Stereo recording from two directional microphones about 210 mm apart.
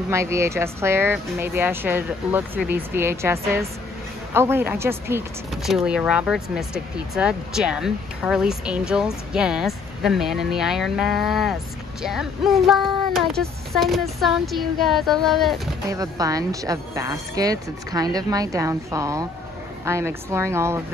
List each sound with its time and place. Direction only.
0.1 s a woman's voice: 15° right (ahead or behind)
5.5 s speech: centre (ahead or behind)
15.9 s a woman's voice: 15° right (ahead or behind)